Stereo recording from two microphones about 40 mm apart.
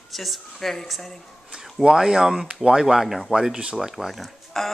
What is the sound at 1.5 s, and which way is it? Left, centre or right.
Speech, centre.